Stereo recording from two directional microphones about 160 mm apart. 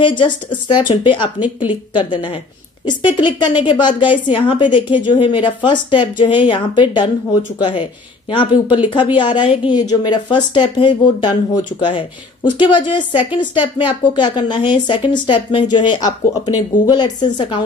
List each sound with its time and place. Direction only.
0.0 s a woman's voice: 30° left (ahead or behind)